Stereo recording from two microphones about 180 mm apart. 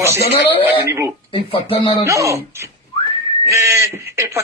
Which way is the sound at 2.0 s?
15° right (ahead or behind).